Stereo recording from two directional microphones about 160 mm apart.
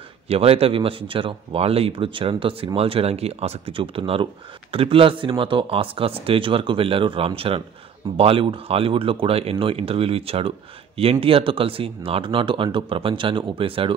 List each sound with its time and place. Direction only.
0.3 s speech: 40° right (ahead or behind)